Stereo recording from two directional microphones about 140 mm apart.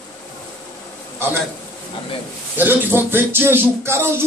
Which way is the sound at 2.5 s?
15° right (ahead or behind).